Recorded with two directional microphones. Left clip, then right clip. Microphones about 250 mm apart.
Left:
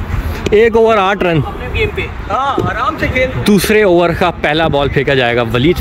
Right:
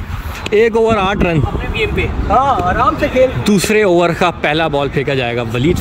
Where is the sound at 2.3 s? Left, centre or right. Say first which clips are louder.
Right 3 dB; right.